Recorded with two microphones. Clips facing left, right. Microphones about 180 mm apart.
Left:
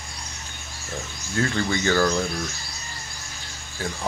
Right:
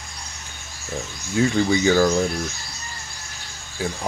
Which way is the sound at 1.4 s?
10° right (ahead or behind).